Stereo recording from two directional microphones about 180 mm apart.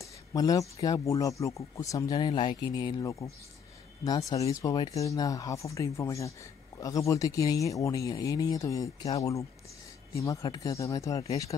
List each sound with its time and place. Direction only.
0.0 s a sound: 20° left (ahead or behind)
0.8 s speech: 20° left (ahead or behind)
10.1 s speech: 15° left (ahead or behind)